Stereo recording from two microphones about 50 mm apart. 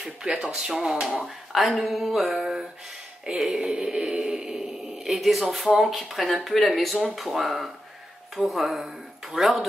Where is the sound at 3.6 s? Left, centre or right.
Centre.